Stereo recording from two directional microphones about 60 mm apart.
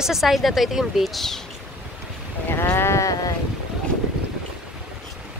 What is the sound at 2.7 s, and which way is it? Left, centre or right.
Sheep, left.